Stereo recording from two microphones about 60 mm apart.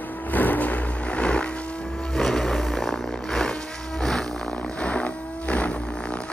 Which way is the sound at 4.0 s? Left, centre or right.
Centre.